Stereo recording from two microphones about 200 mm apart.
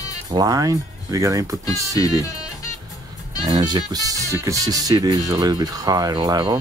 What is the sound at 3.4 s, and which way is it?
Speech, 20° right (ahead or behind).